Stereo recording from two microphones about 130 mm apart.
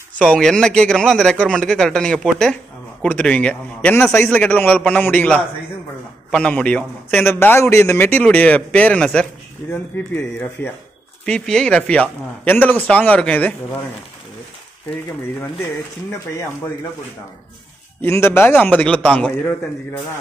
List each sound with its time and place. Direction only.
0.2 s a man's voice: 5° left (ahead or behind)
15.4 s speech: 20° left (ahead or behind)
18.0 s a man's voice: 20° left (ahead or behind)